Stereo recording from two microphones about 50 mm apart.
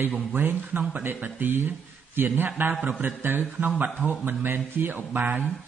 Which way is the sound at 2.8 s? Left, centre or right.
Right.